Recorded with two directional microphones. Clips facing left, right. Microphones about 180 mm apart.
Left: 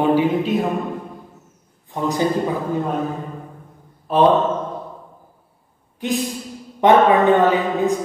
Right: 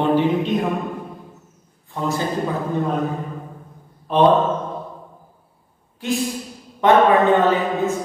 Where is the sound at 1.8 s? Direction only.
15° left (ahead or behind).